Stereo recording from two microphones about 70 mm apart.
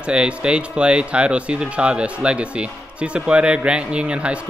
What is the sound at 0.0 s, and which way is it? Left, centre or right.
A man's voice, centre.